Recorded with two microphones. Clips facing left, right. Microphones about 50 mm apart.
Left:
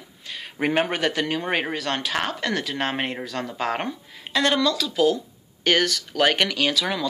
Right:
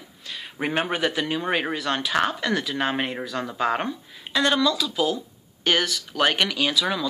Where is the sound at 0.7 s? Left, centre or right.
Left.